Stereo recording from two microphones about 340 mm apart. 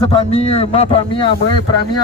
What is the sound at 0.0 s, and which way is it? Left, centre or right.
Speech, centre.